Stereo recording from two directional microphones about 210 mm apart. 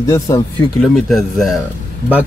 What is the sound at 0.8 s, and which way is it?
Speech, centre (ahead or behind).